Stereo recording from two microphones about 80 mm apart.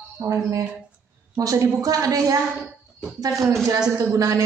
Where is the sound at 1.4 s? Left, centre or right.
Right.